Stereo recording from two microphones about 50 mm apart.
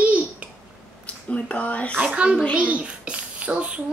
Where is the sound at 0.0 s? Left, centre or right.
Right.